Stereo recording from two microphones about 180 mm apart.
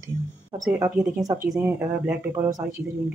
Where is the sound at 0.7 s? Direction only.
20° right (ahead or behind).